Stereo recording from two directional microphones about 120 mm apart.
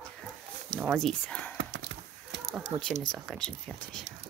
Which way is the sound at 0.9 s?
5° left (ahead or behind).